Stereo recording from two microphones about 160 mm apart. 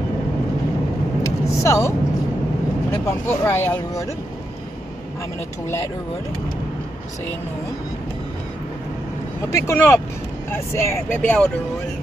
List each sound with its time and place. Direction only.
1.2 s vehicle: 20° left (ahead or behind)
3.1 s speech: 15° left (ahead or behind)
9.5 s speech: 20° left (ahead or behind)